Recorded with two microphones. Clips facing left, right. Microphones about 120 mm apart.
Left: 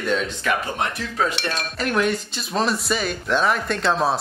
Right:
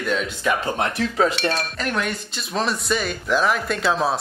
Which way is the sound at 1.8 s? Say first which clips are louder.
Left 4 dB; centre (ahead or behind).